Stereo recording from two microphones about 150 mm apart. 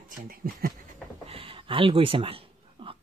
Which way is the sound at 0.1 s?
70° right (ahead or behind).